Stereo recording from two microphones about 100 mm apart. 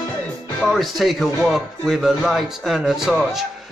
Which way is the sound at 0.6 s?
Centre (ahead or behind).